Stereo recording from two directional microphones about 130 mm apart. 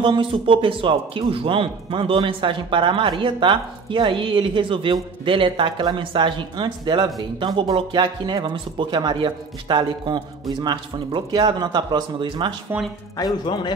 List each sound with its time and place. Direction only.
0.0 s speech: 40° right (ahead or behind)
13.2 s a man's voice: 35° left (ahead or behind)